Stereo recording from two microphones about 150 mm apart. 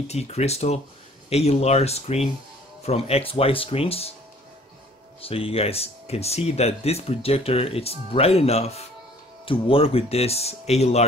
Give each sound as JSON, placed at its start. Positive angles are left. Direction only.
{"t": 0.1, "sound": "speech", "side_deg": 45}
{"t": 5.2, "sound": "speech", "side_deg": 40}